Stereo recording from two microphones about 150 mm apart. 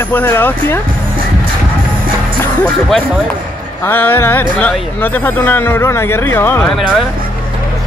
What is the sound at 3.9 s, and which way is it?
Speech, 15° left (ahead or behind).